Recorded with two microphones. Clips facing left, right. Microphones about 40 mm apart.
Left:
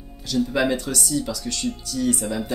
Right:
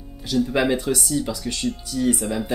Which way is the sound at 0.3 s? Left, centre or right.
Centre.